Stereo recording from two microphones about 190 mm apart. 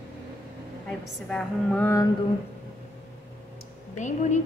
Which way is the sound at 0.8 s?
5° left (ahead or behind).